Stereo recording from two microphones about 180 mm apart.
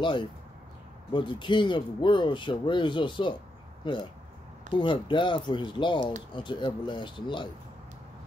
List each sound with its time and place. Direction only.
1.1 s speech: 25° left (ahead or behind)